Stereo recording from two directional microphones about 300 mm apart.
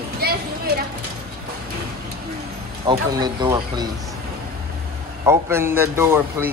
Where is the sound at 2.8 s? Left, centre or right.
Centre.